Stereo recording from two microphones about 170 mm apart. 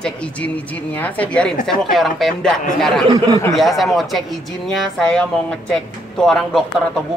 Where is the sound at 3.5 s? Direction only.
Centre (ahead or behind).